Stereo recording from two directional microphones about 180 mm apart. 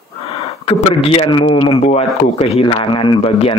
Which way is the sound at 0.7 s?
35° left (ahead or behind).